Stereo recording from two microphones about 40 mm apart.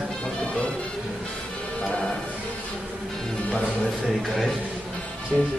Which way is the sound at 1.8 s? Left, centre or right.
Left.